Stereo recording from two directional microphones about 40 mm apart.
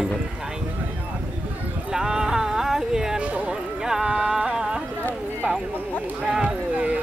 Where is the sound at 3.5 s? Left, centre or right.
Centre.